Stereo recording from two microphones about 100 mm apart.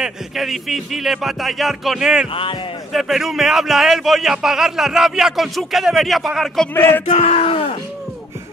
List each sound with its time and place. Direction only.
0.0 s a man's voice: centre (ahead or behind)
6.7 s a sound: 20° left (ahead or behind)
7.1 s battle cry: 90° left; by 7.7 s 70° left (ahead or behind)